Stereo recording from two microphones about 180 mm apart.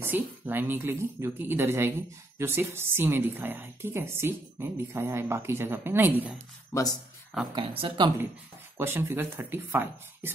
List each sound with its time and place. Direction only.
0.0 s a woman's voice: 10° right (ahead or behind)
7.5 s speech: 30° right (ahead or behind)
8.7 s a woman's voice: 10° right (ahead or behind)